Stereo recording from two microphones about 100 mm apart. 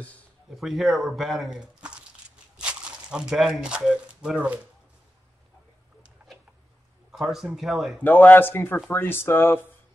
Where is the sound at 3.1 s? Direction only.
10° right (ahead or behind).